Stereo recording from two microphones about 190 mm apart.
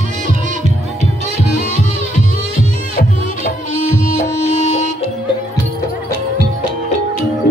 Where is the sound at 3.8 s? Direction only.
40° left (ahead or behind).